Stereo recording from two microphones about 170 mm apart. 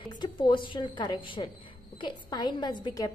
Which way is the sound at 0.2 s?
30° left (ahead or behind).